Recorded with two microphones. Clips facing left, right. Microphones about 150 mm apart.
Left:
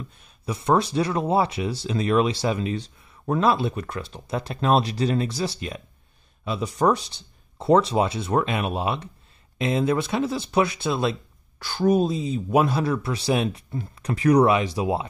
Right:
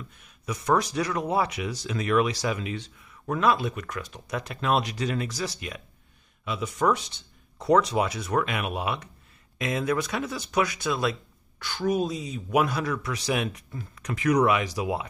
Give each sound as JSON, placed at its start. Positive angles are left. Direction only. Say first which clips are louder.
{"t": 0.2, "sound": "speech", "louder": "left 2 dB", "side_deg": 30}